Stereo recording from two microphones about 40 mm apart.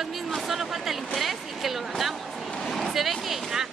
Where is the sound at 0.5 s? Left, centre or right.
Centre.